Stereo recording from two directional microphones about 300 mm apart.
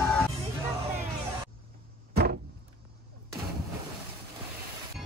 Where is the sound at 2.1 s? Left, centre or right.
Right.